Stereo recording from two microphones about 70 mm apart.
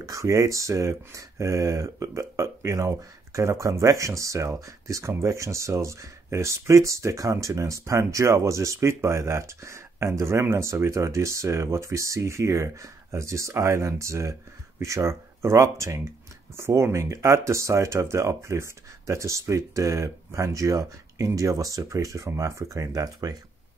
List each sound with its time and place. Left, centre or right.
0.0 s speech: right